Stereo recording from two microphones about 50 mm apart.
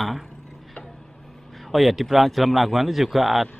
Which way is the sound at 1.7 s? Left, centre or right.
Centre.